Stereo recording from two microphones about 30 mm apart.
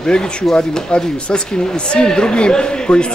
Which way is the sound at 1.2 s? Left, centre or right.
Left.